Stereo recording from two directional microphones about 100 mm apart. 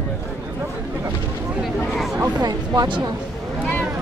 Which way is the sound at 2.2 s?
40° right (ahead or behind).